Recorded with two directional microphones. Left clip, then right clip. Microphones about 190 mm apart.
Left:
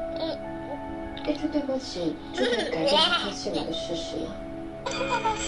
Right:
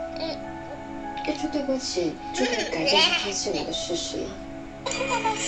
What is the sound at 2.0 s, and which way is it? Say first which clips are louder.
A woman's voice: right 1 dB; 20° left (ahead or behind).